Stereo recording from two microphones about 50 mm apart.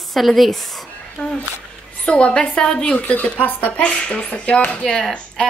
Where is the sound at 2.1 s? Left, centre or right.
Left.